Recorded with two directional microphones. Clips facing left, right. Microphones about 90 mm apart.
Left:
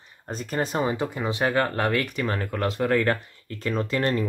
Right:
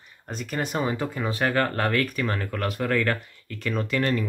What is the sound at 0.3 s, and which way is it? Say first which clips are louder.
Speech: left 2 dB; 35° left (ahead or behind).